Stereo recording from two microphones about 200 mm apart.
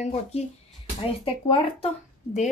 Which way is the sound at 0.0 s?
30° left (ahead or behind).